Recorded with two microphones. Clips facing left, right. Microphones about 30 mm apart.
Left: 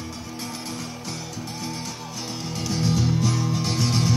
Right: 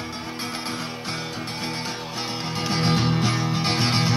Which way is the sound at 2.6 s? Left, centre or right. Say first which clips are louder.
Right 2 dB; right.